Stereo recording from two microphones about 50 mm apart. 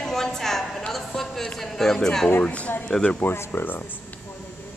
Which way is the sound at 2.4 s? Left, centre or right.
Left.